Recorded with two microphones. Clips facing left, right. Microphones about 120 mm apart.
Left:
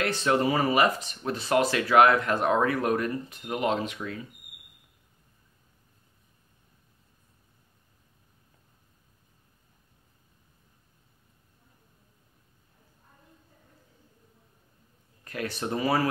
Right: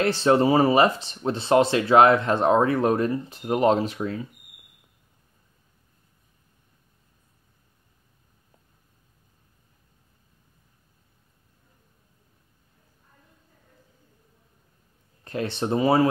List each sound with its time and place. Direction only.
0.0 s speech: 30° right (ahead or behind)
15.2 s speech: 25° right (ahead or behind)